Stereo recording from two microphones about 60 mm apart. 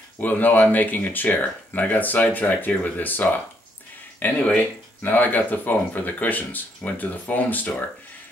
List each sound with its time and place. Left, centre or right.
0.2 s speech: left